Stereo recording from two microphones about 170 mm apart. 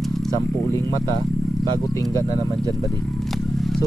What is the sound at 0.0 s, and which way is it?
Insect, centre (ahead or behind).